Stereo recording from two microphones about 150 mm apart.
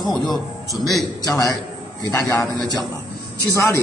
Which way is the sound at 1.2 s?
25° left (ahead or behind).